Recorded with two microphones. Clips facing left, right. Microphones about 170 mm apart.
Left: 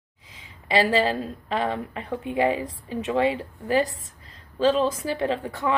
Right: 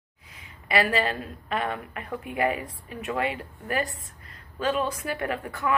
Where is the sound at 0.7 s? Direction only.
30° left (ahead or behind).